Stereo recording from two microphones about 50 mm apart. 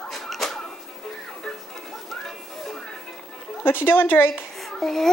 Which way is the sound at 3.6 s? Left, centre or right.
Left.